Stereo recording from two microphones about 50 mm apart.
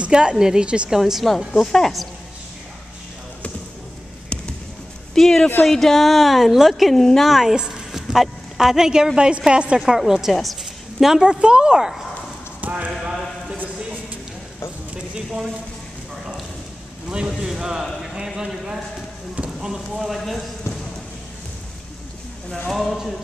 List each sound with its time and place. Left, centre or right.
0.0 s a woman's voice: centre
1.6 s a woman's voice: centre
5.1 s a woman's voice: centre
7.5 s speech: centre
9.8 s speech: centre
10.3 s a sound: centre
11.2 s speech: centre
12.6 s speech: right
17.1 s a woman's voice: centre
22.7 s a woman's voice: centre